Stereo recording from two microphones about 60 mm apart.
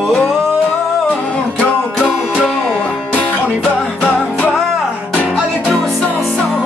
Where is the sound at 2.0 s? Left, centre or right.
Centre.